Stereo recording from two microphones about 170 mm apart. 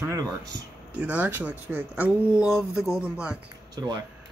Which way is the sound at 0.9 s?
10° right (ahead or behind).